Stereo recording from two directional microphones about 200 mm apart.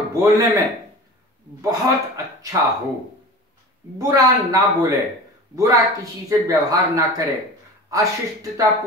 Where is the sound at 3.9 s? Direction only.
15° right (ahead or behind).